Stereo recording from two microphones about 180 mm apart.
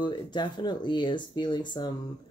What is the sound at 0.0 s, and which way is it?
Speech, 25° left (ahead or behind).